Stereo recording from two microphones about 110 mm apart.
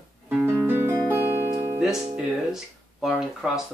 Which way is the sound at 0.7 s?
20° right (ahead or behind).